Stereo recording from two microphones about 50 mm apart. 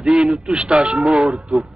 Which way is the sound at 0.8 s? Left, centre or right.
Right.